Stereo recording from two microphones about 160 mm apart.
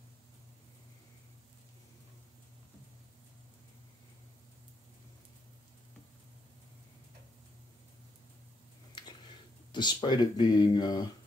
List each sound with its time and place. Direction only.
9.7 s speech: 30° left (ahead or behind)